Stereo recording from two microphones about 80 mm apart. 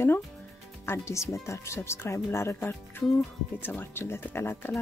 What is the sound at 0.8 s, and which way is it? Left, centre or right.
Speech, left.